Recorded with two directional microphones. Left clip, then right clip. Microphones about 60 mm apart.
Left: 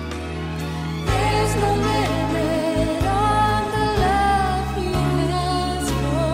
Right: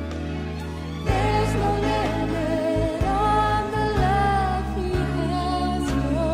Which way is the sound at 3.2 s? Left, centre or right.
Right.